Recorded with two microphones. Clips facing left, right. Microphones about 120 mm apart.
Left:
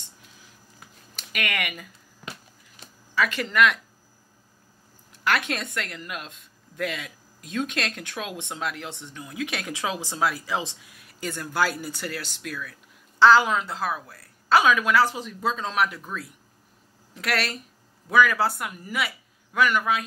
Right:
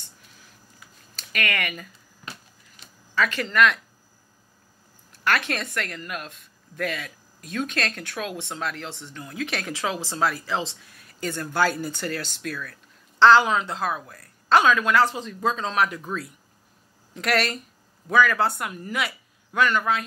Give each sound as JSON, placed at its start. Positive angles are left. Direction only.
{"t": 1.1, "sound": "speech", "side_deg": 10}
{"t": 3.2, "sound": "a woman's voice", "side_deg": 10}
{"t": 5.2, "sound": "a woman's voice", "side_deg": 15}